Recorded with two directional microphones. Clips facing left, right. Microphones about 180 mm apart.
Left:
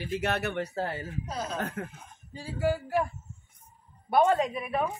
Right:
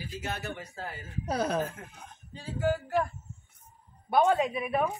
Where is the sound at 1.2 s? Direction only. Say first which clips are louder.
Right 9 dB; 65° right (ahead or behind).